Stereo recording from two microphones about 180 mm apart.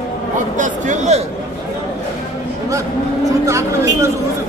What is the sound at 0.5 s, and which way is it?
Speech, 45° right (ahead or behind).